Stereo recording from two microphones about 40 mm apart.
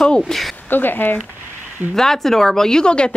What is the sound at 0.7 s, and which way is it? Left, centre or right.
Speech, left.